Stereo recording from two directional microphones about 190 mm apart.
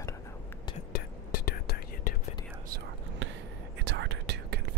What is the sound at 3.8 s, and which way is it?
Whispering, 65° right (ahead or behind).